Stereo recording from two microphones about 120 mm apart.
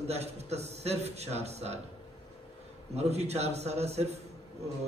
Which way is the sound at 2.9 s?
65° right (ahead or behind).